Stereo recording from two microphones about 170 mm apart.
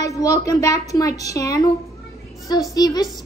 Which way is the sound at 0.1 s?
20° left (ahead or behind).